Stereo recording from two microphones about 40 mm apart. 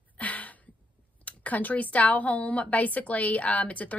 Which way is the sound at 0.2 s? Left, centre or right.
Left.